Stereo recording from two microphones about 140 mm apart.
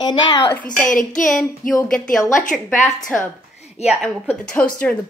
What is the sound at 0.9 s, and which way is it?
Speech, 70° left (ahead or behind).